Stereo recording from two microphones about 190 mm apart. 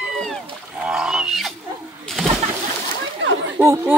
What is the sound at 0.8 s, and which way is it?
Wild animals, 5° right (ahead or behind).